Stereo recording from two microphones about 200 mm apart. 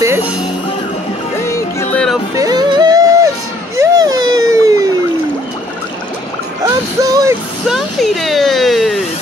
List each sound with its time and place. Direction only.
0.0 s music: 10° right (ahead or behind)
1.5 s music: 10° left (ahead or behind)
2.3 s music: 20° right (ahead or behind)
3.7 s a sound: 15° right (ahead or behind)
6.6 s music: 15° right (ahead or behind)
7.6 s a sound: centre (ahead or behind)